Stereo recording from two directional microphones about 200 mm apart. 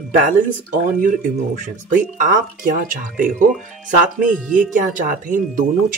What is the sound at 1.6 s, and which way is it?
Speech, 40° right (ahead or behind).